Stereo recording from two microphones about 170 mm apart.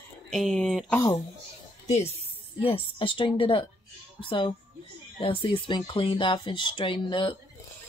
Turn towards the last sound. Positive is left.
turn(degrees=30)  # may be behind; listen again after turning